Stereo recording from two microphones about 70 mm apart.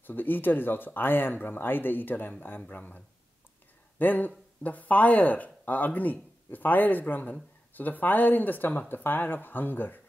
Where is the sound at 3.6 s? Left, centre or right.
Left.